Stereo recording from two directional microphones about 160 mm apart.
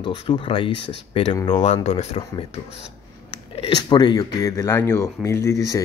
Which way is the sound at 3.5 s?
30° left (ahead or behind).